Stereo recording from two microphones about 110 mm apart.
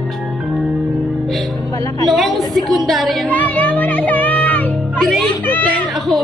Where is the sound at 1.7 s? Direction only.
30° left (ahead or behind).